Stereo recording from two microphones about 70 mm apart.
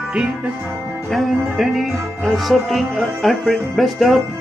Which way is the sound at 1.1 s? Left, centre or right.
Centre.